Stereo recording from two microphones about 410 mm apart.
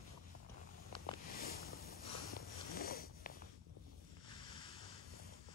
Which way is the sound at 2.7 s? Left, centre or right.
Left.